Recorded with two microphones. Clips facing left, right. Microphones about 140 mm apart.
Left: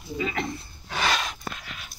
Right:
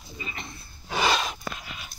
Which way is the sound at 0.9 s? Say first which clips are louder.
Right 2 dB; 5° right (ahead or behind).